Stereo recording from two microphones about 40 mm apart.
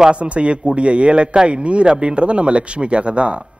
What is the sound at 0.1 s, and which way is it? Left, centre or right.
A man's voice, right.